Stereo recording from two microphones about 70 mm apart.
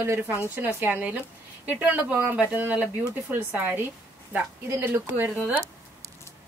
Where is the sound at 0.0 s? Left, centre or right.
Right.